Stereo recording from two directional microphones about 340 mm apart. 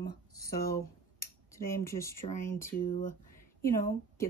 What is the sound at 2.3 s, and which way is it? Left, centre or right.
Speech, left.